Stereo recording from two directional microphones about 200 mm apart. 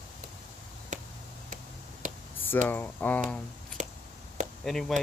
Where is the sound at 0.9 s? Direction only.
40° right (ahead or behind).